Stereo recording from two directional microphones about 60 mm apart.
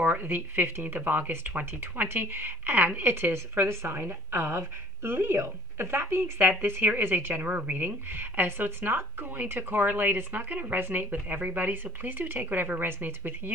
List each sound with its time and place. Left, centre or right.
0.0 s speech: right
3.6 s a woman's voice: right